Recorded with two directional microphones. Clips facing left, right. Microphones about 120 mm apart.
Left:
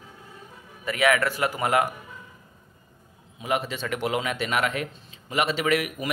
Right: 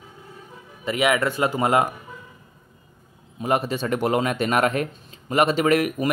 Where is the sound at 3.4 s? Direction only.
40° right (ahead or behind).